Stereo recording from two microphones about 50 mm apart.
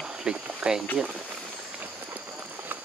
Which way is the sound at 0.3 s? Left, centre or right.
Centre.